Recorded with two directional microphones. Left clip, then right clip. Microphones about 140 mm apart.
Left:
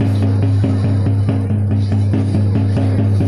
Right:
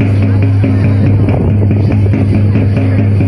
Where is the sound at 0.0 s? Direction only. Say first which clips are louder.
Right 5 dB; 40° right (ahead or behind).